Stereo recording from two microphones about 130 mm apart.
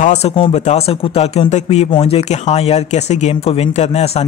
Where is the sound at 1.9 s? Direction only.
45° left (ahead or behind).